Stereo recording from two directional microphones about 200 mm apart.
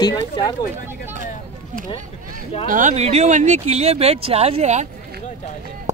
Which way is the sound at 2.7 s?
40° right (ahead or behind).